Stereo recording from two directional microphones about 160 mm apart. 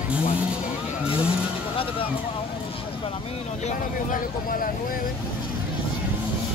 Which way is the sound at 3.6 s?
60° left (ahead or behind).